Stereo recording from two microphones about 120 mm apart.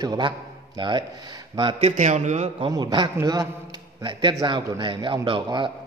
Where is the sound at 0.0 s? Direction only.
35° right (ahead or behind).